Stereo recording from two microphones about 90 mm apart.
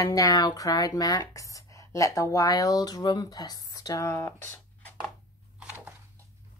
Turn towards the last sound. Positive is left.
turn(degrees=25)  # may be behind; listen again after turning